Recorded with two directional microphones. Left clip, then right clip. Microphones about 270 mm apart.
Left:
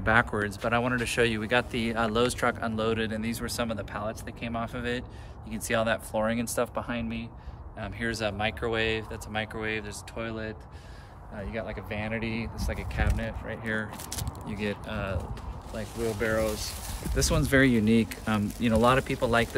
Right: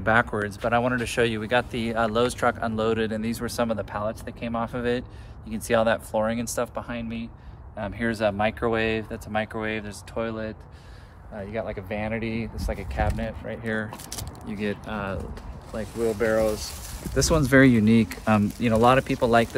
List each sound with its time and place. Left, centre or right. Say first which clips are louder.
0.0 s speech: right 2 dB; centre
7.8 s speech: right 6 dB; centre